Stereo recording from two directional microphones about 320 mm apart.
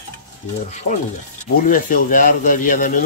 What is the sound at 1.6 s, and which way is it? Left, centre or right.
Speech, left.